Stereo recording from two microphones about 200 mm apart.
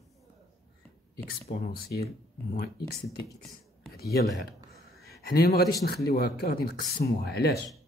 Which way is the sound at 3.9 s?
55° left (ahead or behind).